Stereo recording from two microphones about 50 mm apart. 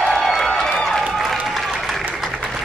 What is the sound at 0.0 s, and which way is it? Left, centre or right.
Run, centre.